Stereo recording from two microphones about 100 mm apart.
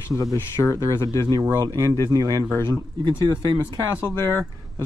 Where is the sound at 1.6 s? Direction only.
35° right (ahead or behind).